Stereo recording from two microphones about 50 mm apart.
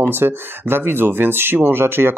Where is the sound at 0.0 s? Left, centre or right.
Right.